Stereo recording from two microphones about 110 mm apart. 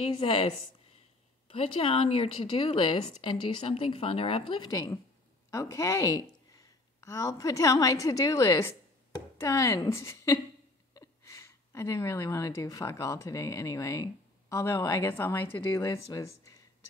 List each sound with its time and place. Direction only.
0.0 s a woman's voice: 55° left (ahead or behind)
4.6 s a woman's voice: 30° left (ahead or behind)